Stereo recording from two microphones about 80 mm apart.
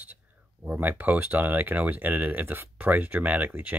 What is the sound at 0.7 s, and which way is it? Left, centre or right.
Speech, right.